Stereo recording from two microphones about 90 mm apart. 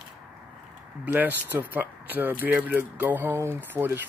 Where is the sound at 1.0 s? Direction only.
20° right (ahead or behind).